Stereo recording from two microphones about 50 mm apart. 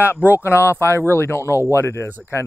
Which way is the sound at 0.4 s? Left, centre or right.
Left.